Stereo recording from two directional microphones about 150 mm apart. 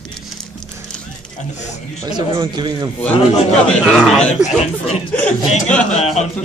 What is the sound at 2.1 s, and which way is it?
Speech, 30° right (ahead or behind).